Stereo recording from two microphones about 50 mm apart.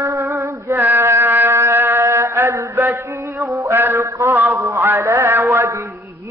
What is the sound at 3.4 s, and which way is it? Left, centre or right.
Music, right.